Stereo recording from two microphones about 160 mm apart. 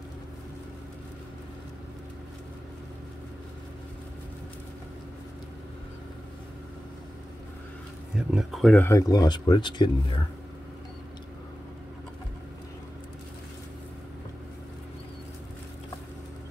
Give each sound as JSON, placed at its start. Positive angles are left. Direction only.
{"t": 8.3, "sound": "speech", "side_deg": 0}
{"t": 8.7, "sound": "speech", "side_deg": 15}